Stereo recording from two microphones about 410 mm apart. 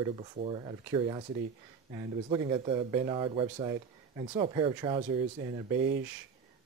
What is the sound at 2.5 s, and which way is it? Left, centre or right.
Speech, centre.